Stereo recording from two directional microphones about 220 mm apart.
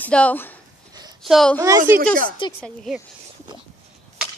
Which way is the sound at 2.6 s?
Centre (ahead or behind).